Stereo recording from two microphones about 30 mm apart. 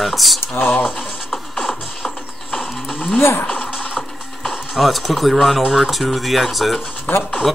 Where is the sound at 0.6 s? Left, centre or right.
Left.